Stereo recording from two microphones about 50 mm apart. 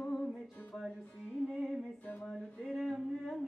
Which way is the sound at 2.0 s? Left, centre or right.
Left.